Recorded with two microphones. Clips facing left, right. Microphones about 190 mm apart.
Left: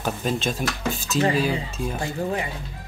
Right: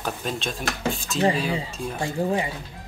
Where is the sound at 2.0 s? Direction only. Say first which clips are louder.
Right 4 dB; 25° right (ahead or behind).